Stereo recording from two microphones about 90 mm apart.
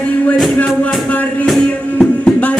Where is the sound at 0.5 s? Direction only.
15° left (ahead or behind).